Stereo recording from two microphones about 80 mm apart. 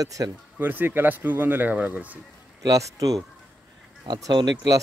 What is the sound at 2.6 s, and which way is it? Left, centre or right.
Speech, right.